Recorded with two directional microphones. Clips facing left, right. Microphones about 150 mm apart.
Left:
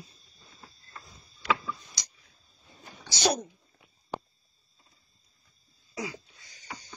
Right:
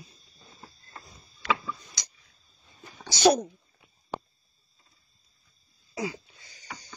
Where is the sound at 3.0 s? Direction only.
55° right (ahead or behind).